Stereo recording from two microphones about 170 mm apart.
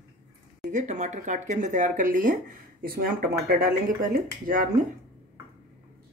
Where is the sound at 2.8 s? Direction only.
60° right (ahead or behind).